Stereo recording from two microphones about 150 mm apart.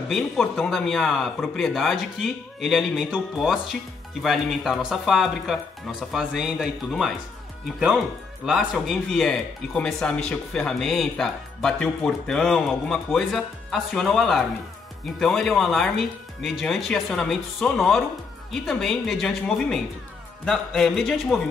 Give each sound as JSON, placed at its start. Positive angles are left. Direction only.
{"t": 0.1, "sound": "speech", "side_deg": 0}
{"t": 8.5, "sound": "speech", "side_deg": -5}